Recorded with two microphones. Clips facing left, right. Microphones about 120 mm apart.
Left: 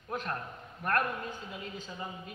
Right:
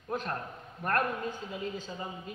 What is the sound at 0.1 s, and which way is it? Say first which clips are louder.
Speech: right 2 dB; 30° right (ahead or behind).